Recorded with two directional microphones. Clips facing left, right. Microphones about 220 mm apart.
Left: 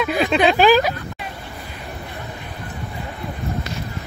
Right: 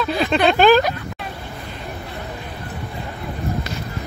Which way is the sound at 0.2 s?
Centre (ahead or behind).